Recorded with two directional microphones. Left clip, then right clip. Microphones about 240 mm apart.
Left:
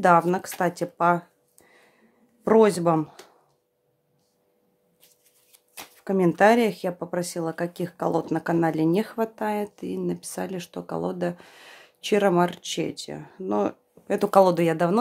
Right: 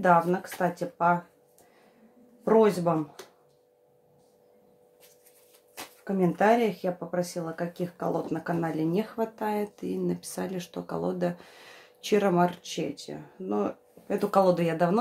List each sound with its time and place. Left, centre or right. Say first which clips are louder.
0.0 s speech: left 4 dB; left
2.4 s speech: left 4 dB; left
6.0 s speech: left 5 dB; left